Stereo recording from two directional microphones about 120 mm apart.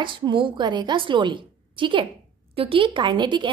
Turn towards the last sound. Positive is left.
turn(degrees=-40)  # may be behind; listen again after turning